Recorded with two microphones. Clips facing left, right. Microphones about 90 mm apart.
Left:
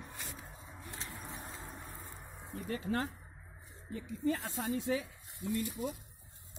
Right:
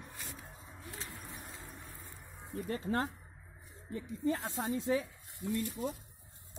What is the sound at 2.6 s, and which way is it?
Speech, 35° right (ahead or behind).